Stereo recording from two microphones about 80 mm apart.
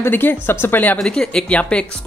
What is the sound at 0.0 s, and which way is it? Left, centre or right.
Speech, left.